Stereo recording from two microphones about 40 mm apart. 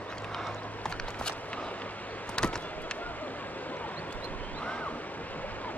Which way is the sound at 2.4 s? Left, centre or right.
Left.